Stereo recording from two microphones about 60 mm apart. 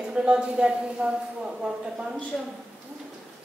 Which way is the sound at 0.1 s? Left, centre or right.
Centre.